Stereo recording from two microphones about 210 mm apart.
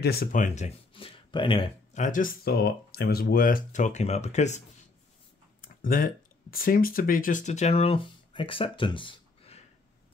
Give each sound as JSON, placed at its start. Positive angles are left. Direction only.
{"t": 0.0, "sound": "speech", "side_deg": 45}
{"t": 0.9, "sound": "a sound", "side_deg": 25}
{"t": 2.0, "sound": "speech", "side_deg": 40}
{"t": 5.6, "sound": "speech", "side_deg": 40}